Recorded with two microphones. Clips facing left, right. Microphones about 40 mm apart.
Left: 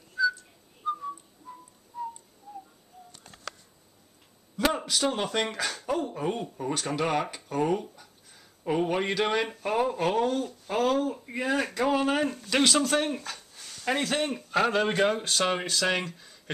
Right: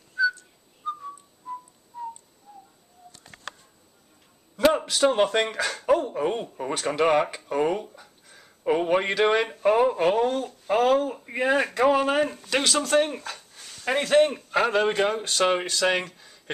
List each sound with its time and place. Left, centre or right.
0.1 s whistling: centre
2.5 s tick: centre
4.6 s speech: centre